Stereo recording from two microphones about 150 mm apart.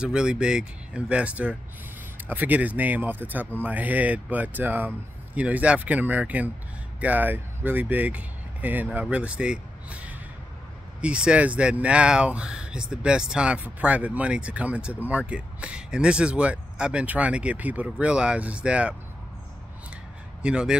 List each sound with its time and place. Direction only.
0.0 s speech: 5° right (ahead or behind)
20.4 s speech: 5° right (ahead or behind)